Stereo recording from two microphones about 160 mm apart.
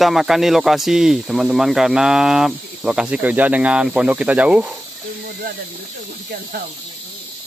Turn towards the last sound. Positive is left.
turn(degrees=-60)  # may be behind; listen again after turning